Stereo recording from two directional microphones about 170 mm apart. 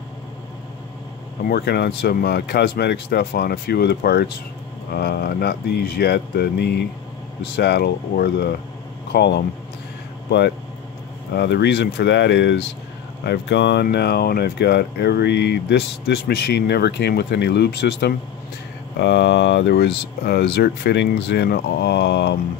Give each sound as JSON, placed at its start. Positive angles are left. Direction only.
{"t": 1.4, "sound": "speech", "side_deg": 65}
{"t": 11.3, "sound": "speech", "side_deg": 80}
{"t": 18.9, "sound": "speech", "side_deg": 90}
{"t": 20.2, "sound": "speech", "side_deg": 70}